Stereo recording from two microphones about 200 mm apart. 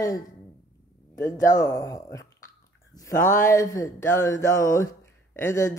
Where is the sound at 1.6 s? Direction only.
15° left (ahead or behind).